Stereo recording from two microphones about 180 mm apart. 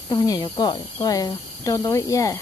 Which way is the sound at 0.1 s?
25° left (ahead or behind).